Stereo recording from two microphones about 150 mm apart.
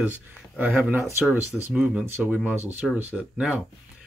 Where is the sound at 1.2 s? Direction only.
Centre (ahead or behind).